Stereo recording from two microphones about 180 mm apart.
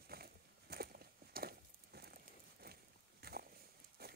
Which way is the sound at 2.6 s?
60° right (ahead or behind).